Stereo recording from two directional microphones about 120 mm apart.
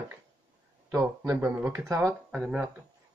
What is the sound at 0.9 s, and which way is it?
Speech, 25° right (ahead or behind).